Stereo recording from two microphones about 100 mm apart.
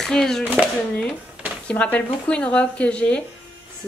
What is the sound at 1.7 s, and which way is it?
Speech, 15° left (ahead or behind).